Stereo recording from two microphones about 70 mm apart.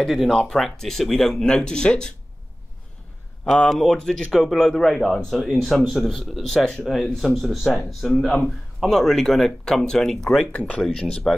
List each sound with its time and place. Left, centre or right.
0.0 s speech: centre
3.4 s speech: centre
10.5 s speech: left